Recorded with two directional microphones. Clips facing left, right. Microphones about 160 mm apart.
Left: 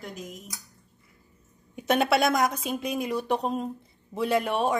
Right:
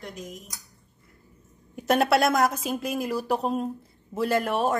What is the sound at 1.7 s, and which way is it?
A woman's voice, centre (ahead or behind).